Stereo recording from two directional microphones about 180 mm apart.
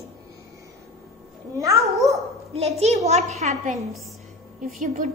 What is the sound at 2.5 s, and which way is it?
A woman's voice, 35° right (ahead or behind).